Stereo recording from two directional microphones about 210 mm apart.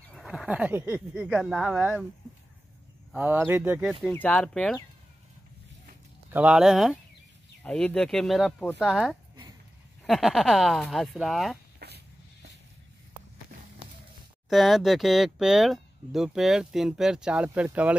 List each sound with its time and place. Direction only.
0.1 s speech: centre (ahead or behind)
3.1 s speech: 10° right (ahead or behind)
4.1 s speech: 5° left (ahead or behind)
6.3 s speech: 5° right (ahead or behind)
11.8 s a sound: 50° right (ahead or behind)
14.5 s speech: centre (ahead or behind)